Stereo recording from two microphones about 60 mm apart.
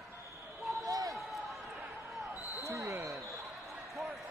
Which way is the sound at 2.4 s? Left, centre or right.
Left.